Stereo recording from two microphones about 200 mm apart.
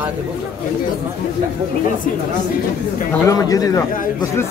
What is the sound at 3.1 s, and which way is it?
Speech, 15° left (ahead or behind).